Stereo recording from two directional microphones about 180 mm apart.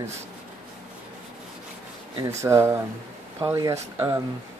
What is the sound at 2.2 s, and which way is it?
Speech, 15° right (ahead or behind).